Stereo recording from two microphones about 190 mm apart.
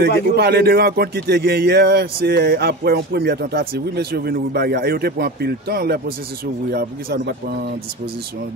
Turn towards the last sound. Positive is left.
turn(degrees=-55)  # may be behind; listen again after turning